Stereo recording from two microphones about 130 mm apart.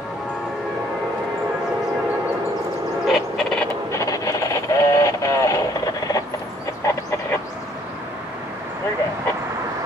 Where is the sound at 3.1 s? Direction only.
5° left (ahead or behind).